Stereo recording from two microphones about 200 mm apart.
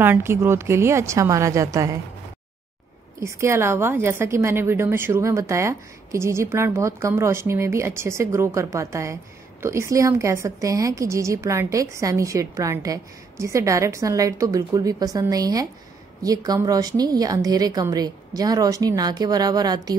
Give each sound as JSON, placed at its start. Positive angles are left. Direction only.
{"t": 0.0, "sound": "a woman's voice", "side_deg": -10}
{"t": 3.2, "sound": "a woman's voice", "side_deg": -15}